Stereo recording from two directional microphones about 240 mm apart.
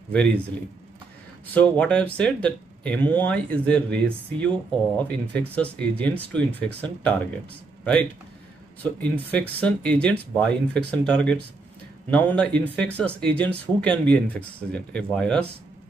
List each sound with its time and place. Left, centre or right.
0.1 s speech: centre
1.5 s speech: centre